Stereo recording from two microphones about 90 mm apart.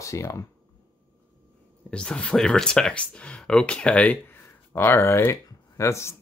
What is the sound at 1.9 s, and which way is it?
Speech, 10° left (ahead or behind).